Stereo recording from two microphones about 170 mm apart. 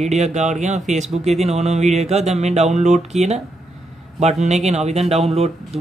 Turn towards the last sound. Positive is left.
turn(degrees=-40)  # may be behind; listen again after turning